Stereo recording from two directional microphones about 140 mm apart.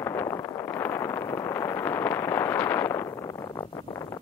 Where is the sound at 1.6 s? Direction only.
15° left (ahead or behind).